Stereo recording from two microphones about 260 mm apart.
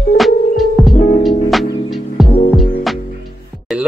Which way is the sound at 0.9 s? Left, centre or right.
Left.